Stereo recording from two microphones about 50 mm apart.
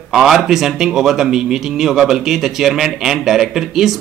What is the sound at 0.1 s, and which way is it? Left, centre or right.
Speech, centre.